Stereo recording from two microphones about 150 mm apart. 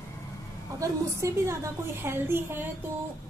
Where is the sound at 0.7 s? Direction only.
20° right (ahead or behind).